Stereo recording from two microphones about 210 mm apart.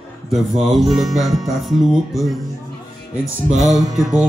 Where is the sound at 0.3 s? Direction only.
Centre (ahead or behind).